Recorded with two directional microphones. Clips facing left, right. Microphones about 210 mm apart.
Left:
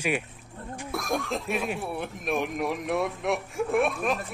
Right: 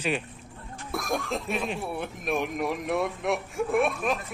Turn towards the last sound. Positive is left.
turn(degrees=0)  # may be behind; listen again after turning